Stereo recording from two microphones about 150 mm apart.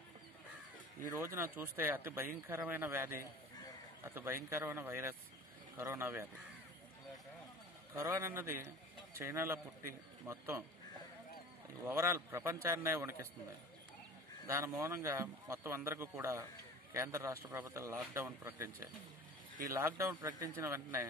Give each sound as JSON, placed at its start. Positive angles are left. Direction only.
{"t": 1.0, "sound": "speech", "side_deg": -20}
{"t": 7.9, "sound": "a man's voice", "side_deg": -15}
{"t": 11.8, "sound": "speech", "side_deg": -20}
{"t": 14.8, "sound": "speech", "side_deg": -20}